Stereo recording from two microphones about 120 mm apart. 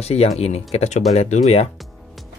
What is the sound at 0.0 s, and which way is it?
Speech, 60° left (ahead or behind).